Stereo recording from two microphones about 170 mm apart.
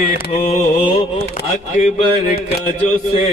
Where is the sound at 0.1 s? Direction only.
45° left (ahead or behind).